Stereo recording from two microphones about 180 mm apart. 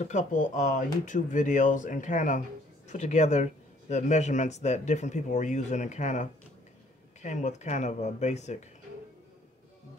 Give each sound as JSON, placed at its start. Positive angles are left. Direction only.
{"t": 0.0, "sound": "speech", "side_deg": 45}